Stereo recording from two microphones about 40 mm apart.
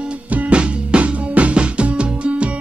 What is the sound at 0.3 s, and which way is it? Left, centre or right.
Music, right.